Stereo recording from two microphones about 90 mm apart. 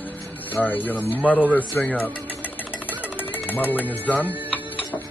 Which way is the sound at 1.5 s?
15° left (ahead or behind).